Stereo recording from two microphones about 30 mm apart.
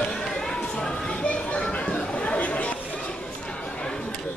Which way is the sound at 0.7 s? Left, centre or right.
Left.